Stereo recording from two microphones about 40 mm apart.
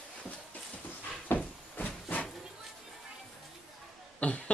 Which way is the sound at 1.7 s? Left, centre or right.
Left.